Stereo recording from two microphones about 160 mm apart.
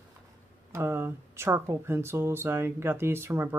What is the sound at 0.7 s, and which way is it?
Speech, 15° right (ahead or behind).